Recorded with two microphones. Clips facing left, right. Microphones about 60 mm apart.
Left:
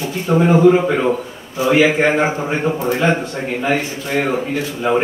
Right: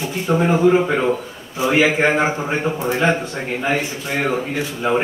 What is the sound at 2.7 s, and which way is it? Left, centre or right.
Speech, centre.